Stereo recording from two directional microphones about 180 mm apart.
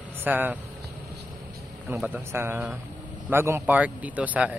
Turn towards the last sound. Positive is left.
turn(degrees=-10)  # may be behind; listen again after turning